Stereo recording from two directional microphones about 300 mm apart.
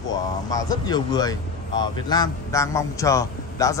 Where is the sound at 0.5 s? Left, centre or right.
Centre.